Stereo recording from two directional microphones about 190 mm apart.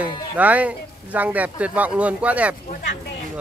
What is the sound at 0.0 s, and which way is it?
Speech, 10° right (ahead or behind).